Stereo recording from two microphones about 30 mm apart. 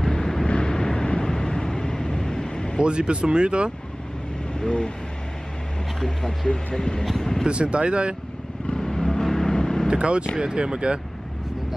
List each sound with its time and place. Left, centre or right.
0.0 s vehicle: centre
0.5 s vehicle: left
2.8 s speech: right
4.6 s speech: left
5.9 s speech: centre
7.4 s speech: right
8.7 s vehicle: centre
9.9 s speech: right
10.4 s speech: right